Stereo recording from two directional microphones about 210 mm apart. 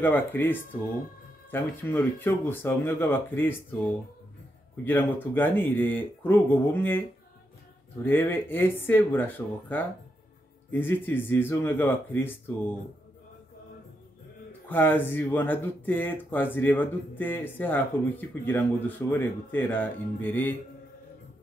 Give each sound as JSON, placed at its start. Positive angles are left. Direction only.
{"t": 0.0, "sound": "speech", "side_deg": 10}
{"t": 4.8, "sound": "speech", "side_deg": 10}
{"t": 8.0, "sound": "speech", "side_deg": 10}
{"t": 14.7, "sound": "speech", "side_deg": 10}